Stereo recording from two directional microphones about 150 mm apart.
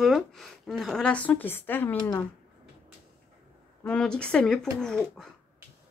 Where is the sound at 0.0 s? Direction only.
Centre (ahead or behind).